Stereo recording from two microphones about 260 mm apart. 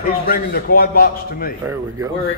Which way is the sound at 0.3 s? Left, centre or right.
Left.